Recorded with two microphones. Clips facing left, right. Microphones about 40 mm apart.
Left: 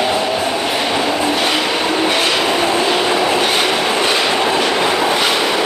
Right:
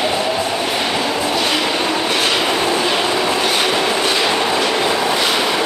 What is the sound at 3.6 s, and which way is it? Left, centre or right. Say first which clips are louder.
Train: left 1 dB; centre.